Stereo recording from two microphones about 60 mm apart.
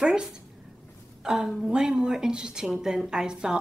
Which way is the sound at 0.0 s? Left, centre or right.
Centre.